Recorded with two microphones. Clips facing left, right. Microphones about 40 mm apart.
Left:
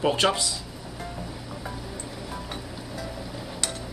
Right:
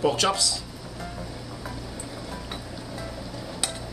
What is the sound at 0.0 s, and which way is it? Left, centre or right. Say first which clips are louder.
Speech: even; left.